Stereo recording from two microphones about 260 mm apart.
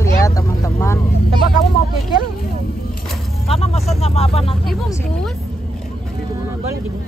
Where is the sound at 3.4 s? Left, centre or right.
Left.